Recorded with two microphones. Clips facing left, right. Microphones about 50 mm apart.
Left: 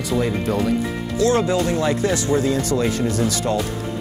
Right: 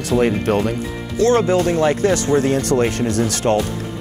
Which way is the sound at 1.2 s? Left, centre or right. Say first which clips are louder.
Right 3 dB; right.